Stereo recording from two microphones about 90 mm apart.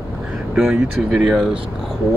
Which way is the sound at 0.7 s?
5° right (ahead or behind).